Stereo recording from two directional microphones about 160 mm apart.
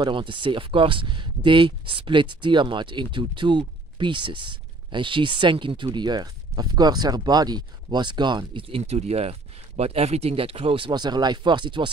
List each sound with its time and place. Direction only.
0.0 s speech: 30° right (ahead or behind)